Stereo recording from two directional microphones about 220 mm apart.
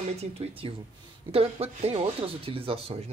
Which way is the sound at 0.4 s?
25° right (ahead or behind).